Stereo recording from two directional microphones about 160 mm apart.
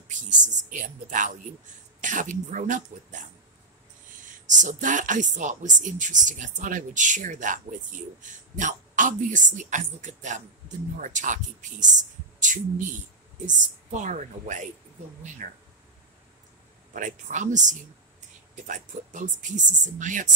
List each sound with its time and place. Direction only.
0.4 s speech: 50° right (ahead or behind)
4.5 s speech: 50° right (ahead or behind)
16.9 s speech: 50° right (ahead or behind)